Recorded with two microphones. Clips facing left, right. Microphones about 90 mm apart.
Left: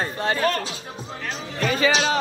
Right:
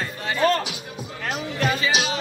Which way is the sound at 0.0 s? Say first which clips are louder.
Left 4 dB; 35° left (ahead or behind).